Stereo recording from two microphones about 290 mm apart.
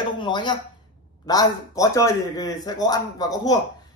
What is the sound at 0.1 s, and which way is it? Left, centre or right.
Speech, centre.